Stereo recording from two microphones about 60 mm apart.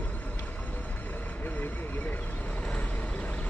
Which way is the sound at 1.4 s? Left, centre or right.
Left.